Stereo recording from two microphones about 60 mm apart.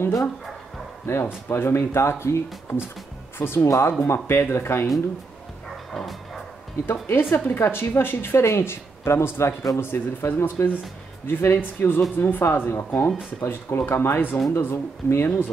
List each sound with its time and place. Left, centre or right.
1.1 s speech: left
3.6 s speech: left
4.0 s speech: left
5.9 s music: centre
6.9 s speech: left